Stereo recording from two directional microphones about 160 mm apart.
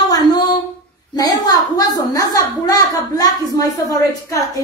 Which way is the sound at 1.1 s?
25° left (ahead or behind).